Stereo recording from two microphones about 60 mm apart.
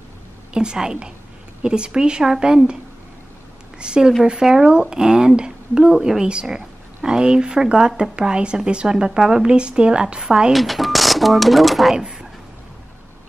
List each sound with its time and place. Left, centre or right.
0.5 s a woman's voice: centre
10.5 s speech: centre
12.0 s a sound: centre